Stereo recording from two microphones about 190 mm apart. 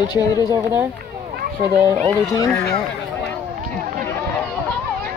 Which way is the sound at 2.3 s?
15° left (ahead or behind).